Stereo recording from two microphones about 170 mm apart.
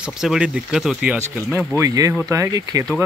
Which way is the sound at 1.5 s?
15° right (ahead or behind).